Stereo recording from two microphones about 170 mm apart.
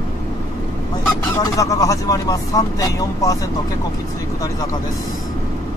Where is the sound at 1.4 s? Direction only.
20° left (ahead or behind).